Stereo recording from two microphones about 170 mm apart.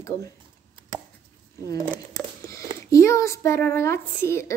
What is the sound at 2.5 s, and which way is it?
A woman's voice, 20° left (ahead or behind).